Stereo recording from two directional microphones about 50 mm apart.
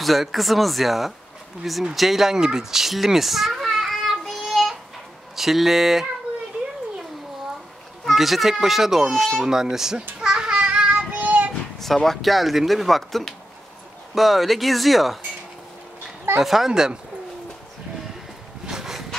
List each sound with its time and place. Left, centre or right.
0.0 s speech: centre
2.0 s a sound: centre
5.3 s speech: centre
6.5 s a sound: centre
8.1 s speech: centre
10.2 s child singing: centre; by 11.5 s right
11.8 s speech: centre
16.3 s speech: centre
18.7 s a sound: centre